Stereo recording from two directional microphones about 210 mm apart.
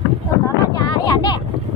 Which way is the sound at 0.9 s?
20° left (ahead or behind).